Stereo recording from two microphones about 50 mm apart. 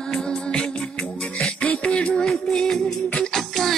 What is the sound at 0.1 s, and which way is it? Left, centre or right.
Music, centre.